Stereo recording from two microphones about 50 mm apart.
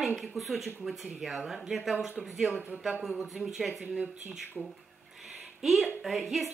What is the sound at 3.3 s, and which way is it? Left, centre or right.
Speech, centre.